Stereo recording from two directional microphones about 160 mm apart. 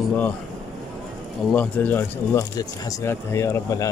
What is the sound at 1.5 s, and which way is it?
Speech, 10° left (ahead or behind).